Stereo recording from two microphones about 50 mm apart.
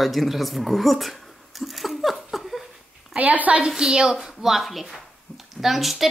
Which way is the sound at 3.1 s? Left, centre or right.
Right.